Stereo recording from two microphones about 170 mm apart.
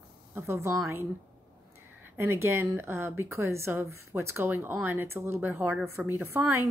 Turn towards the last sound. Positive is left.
turn(degrees=-15)  # may be behind; listen again after turning